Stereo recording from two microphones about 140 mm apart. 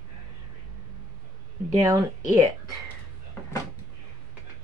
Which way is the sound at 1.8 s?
25° right (ahead or behind).